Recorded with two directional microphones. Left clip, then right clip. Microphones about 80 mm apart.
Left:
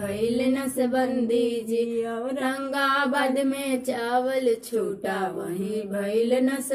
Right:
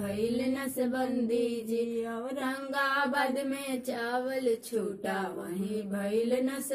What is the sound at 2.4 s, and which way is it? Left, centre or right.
Mantra, centre.